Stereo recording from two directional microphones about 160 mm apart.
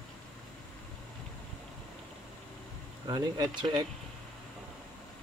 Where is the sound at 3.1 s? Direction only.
25° right (ahead or behind).